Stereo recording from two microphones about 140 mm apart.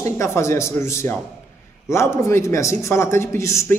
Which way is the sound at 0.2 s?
20° left (ahead or behind).